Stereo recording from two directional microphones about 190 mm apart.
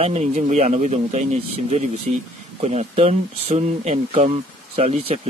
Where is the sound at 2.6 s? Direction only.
35° right (ahead or behind).